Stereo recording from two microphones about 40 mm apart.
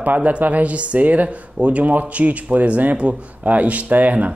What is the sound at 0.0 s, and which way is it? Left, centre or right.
Speech, right.